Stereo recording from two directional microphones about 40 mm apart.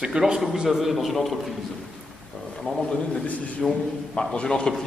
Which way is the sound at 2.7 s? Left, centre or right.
Left.